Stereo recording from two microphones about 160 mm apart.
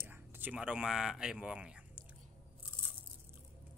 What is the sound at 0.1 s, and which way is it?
Speech, 10° right (ahead or behind).